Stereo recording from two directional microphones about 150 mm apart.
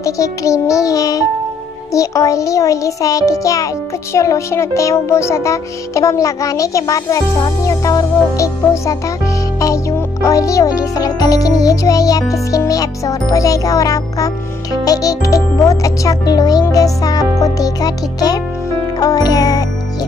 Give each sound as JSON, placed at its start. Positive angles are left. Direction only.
{"t": 0.0, "sound": "a child's voice", "side_deg": 20}
{"t": 18.9, "sound": "music", "side_deg": 25}